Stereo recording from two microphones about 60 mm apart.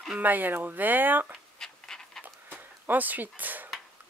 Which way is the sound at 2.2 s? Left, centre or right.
Right.